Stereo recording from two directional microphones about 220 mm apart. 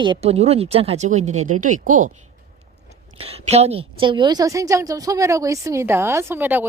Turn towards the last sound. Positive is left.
turn(degrees=-10)  # may be behind; listen again after turning